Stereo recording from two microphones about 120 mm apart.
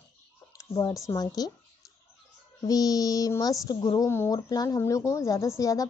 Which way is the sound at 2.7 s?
30° left (ahead or behind).